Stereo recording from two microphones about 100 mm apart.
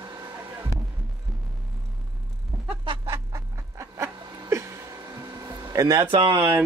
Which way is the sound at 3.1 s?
30° right (ahead or behind).